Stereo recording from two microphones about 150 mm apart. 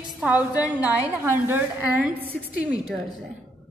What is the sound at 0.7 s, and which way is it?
A woman's voice, 10° right (ahead or behind).